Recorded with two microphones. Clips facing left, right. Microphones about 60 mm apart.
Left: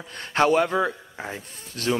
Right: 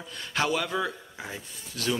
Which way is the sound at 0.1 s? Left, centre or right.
Left.